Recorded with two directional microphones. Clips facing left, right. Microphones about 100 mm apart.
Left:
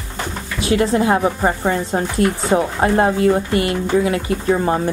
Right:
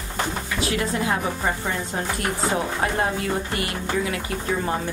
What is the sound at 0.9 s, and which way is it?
A woman's voice, 40° left (ahead or behind).